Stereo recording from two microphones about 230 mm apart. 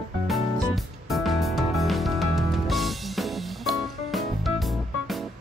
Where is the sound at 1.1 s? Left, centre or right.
Centre.